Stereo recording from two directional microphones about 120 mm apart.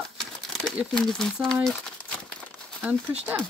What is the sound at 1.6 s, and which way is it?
Crumpling, 5° left (ahead or behind).